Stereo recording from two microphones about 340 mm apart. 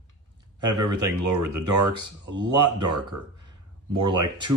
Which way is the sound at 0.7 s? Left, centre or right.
Right.